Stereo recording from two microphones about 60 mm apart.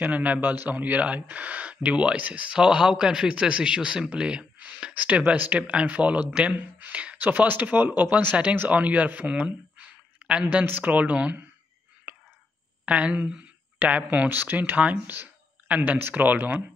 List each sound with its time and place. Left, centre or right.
0.0 s a man's voice: right
12.1 s a sound: right
12.8 s a man's voice: right